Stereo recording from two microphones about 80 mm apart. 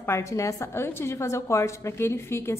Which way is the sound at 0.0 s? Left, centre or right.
Left.